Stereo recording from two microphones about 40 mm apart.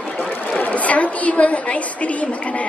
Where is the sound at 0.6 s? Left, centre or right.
Left.